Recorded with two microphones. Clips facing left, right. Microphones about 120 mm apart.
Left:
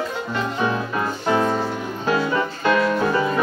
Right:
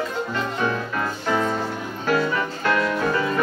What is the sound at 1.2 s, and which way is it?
Music, 15° left (ahead or behind).